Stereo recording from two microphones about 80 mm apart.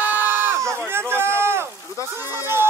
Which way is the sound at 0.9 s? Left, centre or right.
Right.